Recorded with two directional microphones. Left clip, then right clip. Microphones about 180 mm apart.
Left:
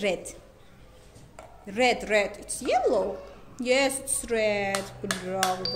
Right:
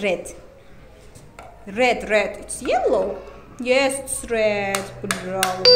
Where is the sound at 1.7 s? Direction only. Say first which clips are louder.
Right 5 dB; 25° left (ahead or behind).